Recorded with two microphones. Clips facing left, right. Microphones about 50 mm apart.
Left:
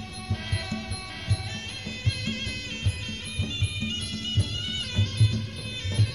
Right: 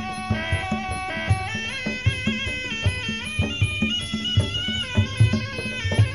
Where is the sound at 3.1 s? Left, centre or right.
Right.